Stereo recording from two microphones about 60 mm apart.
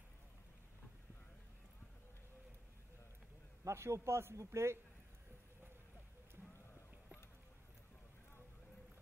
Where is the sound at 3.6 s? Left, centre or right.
Right.